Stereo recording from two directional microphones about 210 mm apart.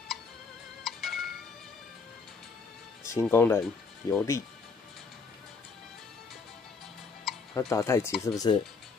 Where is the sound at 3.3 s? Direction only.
10° left (ahead or behind).